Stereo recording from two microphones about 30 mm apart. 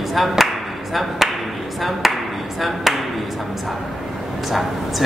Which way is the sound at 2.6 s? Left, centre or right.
Centre.